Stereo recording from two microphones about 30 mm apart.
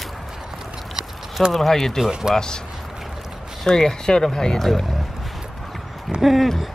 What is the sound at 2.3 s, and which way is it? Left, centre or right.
Speech, left.